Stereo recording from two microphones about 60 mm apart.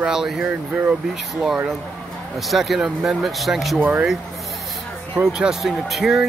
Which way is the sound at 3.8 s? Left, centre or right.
Right.